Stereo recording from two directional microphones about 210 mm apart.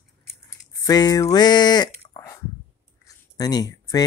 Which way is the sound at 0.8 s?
20° left (ahead or behind).